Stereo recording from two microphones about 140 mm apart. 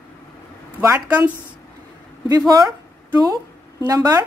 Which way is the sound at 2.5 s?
25° right (ahead or behind).